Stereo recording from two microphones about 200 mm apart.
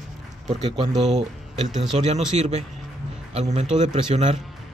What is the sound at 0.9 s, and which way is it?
Speech, centre (ahead or behind).